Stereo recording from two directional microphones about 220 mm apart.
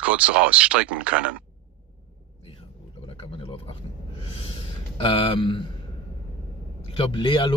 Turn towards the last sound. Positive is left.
turn(degrees=20)  # may be behind; listen again after turning